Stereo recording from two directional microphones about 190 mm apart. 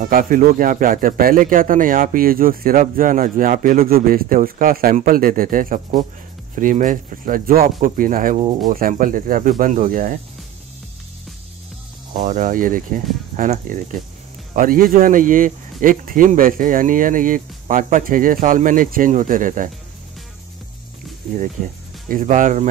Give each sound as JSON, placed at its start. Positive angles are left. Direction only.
{"t": 0.0, "sound": "a man's voice", "side_deg": -45}
{"t": 12.1, "sound": "a man's voice", "side_deg": -40}
{"t": 21.6, "sound": "a man's voice", "side_deg": -45}